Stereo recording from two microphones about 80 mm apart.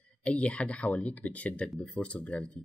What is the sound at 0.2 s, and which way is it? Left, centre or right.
Speech, centre.